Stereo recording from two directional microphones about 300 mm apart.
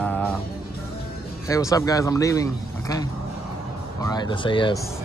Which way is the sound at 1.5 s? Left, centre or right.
Centre.